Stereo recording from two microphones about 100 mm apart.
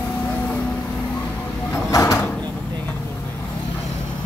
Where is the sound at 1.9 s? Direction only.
30° left (ahead or behind).